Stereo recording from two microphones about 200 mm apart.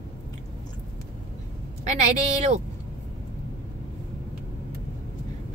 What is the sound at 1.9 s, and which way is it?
Speech, 35° right (ahead or behind).